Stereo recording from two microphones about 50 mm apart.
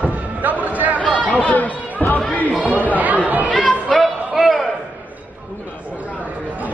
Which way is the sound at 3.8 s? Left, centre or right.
Centre.